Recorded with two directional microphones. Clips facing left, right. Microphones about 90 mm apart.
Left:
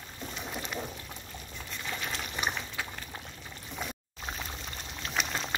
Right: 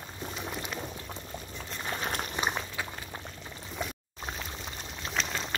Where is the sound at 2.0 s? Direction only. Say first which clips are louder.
Right 4 dB; 40° right (ahead or behind).